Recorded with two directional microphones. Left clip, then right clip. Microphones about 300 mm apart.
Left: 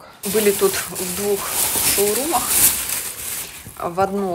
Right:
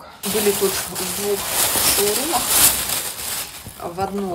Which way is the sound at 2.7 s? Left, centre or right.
Right.